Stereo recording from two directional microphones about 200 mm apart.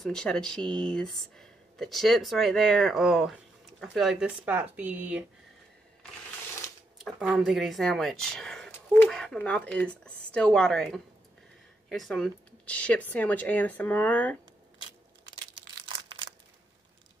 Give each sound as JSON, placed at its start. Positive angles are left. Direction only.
{"t": 0.0, "sound": "speech", "side_deg": 5}
{"t": 7.0, "sound": "speech", "side_deg": -5}
{"t": 15.8, "sound": "crushing", "side_deg": -25}